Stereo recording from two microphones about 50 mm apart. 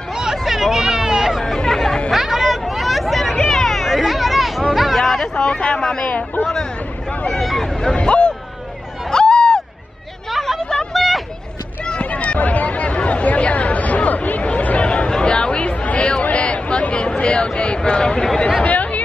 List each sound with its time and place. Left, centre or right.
0.1 s hubbub: centre
1.4 s chatter: centre
2.0 s hubbub: centre
5.3 s speech: centre
6.5 s a sound: centre
8.0 s hubbub: left
10.3 s a sound: centre
11.8 s a sound: left
15.0 s chatter: centre
18.6 s chatter: left